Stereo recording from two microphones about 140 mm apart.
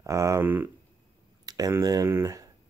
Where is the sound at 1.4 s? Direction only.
25° right (ahead or behind).